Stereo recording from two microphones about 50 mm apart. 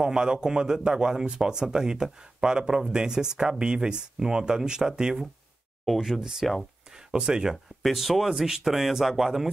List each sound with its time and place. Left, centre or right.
0.0 s speech: centre
6.9 s a sound: centre
7.5 s speech: centre